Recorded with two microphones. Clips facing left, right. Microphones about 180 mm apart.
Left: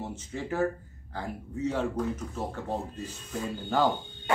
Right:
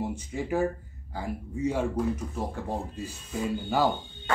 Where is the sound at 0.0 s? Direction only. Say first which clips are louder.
Right 4 dB; 15° right (ahead or behind).